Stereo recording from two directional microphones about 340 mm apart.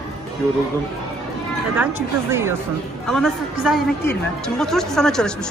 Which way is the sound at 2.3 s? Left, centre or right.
Centre.